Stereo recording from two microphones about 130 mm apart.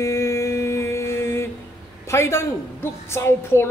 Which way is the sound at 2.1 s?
20° left (ahead or behind).